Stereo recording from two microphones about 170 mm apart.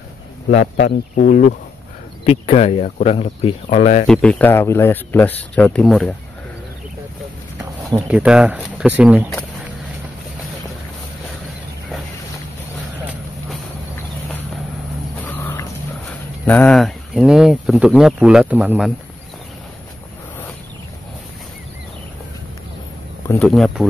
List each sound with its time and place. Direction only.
0.5 s speech: 45° left (ahead or behind)
0.8 s speech: 60° left (ahead or behind)
2.2 s speech: 35° left (ahead or behind)
4.1 s speech: 5° left (ahead or behind)
8.1 s speech: 5° right (ahead or behind)
15.2 s a sound: 10° left (ahead or behind)
16.4 s speech: 10° left (ahead or behind); by 18.9 s 10° right (ahead or behind)
23.4 s speech: centre (ahead or behind)